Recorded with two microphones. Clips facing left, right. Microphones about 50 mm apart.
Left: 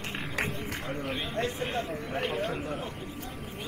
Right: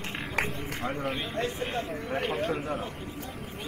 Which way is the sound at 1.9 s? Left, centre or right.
Right.